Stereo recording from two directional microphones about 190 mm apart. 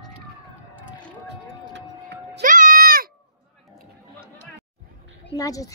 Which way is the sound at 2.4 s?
45° right (ahead or behind).